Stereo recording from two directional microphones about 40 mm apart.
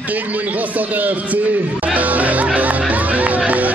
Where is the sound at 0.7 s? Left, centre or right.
Right.